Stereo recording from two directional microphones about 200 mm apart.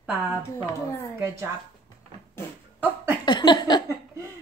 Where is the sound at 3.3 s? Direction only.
20° left (ahead or behind).